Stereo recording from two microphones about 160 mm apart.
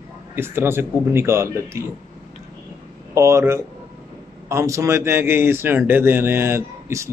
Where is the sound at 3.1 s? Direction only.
20° right (ahead or behind).